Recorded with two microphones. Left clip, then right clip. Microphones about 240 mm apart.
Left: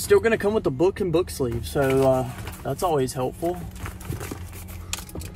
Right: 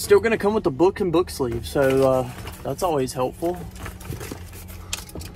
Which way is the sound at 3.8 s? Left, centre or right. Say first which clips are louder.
Even; centre.